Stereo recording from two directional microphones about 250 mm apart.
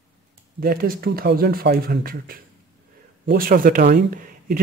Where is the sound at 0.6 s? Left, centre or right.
Right.